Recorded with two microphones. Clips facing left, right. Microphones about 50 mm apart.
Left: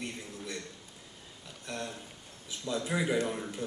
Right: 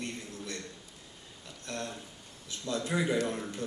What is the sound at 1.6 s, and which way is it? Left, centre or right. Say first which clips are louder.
A man's voice: even; centre.